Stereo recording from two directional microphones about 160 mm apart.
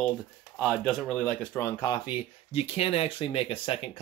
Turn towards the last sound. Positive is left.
turn(degrees=35)  # may be behind; listen again after turning